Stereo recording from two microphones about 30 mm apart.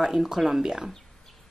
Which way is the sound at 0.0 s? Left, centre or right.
Centre.